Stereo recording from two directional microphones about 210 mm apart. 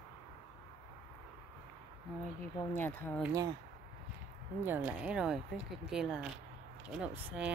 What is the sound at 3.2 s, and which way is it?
Speech, 15° right (ahead or behind).